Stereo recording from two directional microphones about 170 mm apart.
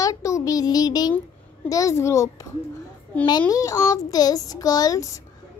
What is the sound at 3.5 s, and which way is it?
A child's voice, 20° left (ahead or behind).